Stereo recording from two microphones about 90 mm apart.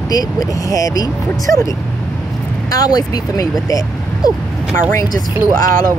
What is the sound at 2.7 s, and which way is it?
Speech, 45° left (ahead or behind).